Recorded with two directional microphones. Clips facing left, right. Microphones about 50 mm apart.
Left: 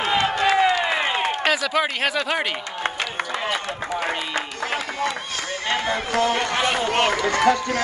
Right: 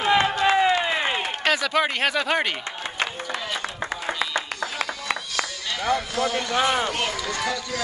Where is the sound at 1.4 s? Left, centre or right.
Centre.